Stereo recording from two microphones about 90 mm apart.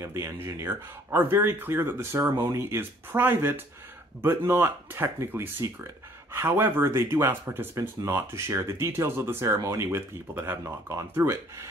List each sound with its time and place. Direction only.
0.0 s speech: 30° right (ahead or behind)
2.2 s speech: 45° right (ahead or behind)
2.5 s speech: 25° right (ahead or behind)